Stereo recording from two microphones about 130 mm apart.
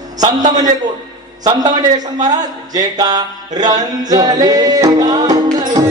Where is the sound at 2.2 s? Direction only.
30° right (ahead or behind).